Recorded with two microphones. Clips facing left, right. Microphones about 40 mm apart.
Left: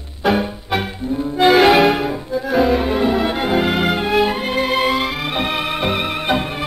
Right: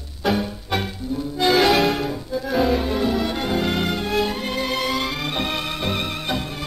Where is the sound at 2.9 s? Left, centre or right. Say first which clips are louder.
Left 5 dB; left.